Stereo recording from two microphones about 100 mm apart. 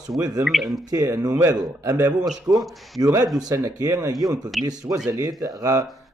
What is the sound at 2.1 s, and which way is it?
Speech, 10° right (ahead or behind).